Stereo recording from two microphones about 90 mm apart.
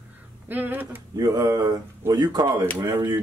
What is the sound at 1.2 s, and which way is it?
Speech, 45° right (ahead or behind).